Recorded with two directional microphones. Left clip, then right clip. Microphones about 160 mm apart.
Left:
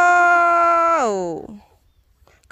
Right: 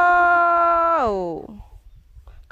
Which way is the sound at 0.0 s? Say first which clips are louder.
Left 2 dB; 5° left (ahead or behind).